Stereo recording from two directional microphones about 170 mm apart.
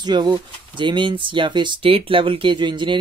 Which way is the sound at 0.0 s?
25° right (ahead or behind).